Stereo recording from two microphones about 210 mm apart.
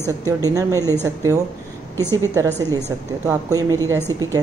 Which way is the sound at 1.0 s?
15° right (ahead or behind).